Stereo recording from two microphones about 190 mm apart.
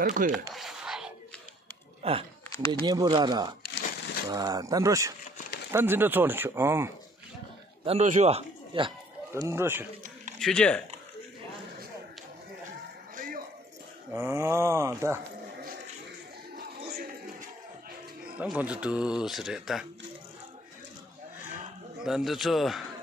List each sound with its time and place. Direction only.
0.0 s speech: 45° right (ahead or behind)
0.3 s a sound: centre (ahead or behind)
2.0 s speech: 30° right (ahead or behind); by 6.9 s 15° right (ahead or behind)
7.8 s a man's voice: 35° right (ahead or behind)
9.3 s speech: 15° right (ahead or behind)
10.4 s speech: 5° left (ahead or behind)
13.1 s music: 45° right (ahead or behind)
14.1 s speech: 15° right (ahead or behind)
16.5 s a sound: 50° right (ahead or behind)
18.4 s speech: 5° right (ahead or behind)
22.0 s speech: centre (ahead or behind)